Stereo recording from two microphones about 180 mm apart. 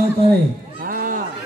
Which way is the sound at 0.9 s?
50° right (ahead or behind).